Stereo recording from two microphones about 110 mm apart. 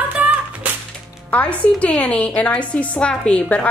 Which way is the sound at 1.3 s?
10° left (ahead or behind).